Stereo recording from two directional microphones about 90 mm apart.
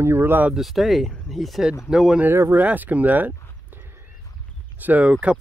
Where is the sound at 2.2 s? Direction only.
25° right (ahead or behind).